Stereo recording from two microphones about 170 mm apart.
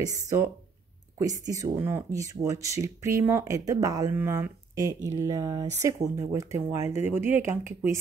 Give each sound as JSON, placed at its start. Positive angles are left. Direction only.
{"t": 0.0, "sound": "speech", "side_deg": -20}